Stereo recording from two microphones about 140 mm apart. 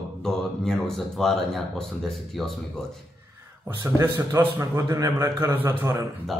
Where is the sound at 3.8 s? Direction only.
20° right (ahead or behind).